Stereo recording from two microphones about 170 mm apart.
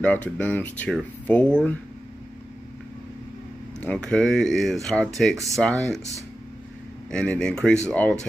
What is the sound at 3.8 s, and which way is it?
Speech, 5° left (ahead or behind).